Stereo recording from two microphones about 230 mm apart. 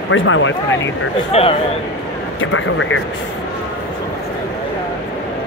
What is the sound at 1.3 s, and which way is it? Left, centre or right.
Speech, left.